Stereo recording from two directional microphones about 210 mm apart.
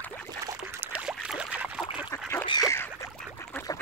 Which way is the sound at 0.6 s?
10° right (ahead or behind).